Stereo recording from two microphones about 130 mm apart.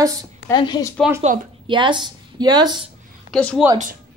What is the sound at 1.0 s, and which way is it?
Speech, 5° left (ahead or behind).